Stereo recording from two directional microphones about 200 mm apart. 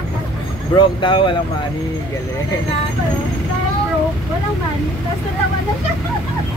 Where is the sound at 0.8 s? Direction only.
25° left (ahead or behind).